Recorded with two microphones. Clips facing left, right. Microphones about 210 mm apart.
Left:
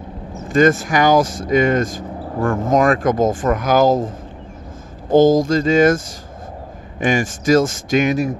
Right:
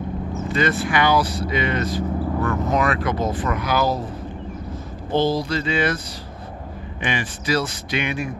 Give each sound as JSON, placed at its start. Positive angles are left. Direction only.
{"t": 0.5, "sound": "speech", "side_deg": 45}
{"t": 5.1, "sound": "speech", "side_deg": 45}
{"t": 7.0, "sound": "speech", "side_deg": 45}